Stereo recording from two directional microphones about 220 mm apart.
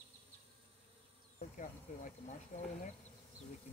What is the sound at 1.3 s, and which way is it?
Speech, 35° left (ahead or behind).